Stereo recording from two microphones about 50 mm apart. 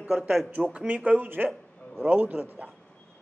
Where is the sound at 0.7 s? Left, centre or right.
Right.